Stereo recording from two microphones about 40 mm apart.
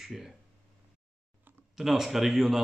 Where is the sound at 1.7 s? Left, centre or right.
Centre.